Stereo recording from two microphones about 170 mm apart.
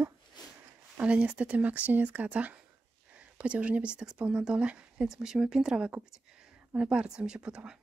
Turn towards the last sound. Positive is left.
turn(degrees=-5)  # may be behind; listen again after turning